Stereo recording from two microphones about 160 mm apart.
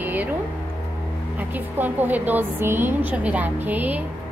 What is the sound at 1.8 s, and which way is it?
A woman's voice, 10° right (ahead or behind).